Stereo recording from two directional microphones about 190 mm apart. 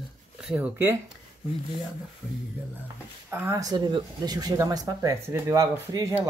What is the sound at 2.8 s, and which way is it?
Speech, 10° right (ahead or behind).